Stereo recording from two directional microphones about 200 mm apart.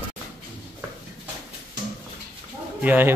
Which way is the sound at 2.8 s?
10° right (ahead or behind).